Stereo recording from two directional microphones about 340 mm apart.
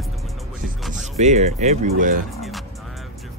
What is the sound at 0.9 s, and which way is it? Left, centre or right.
Speech, right.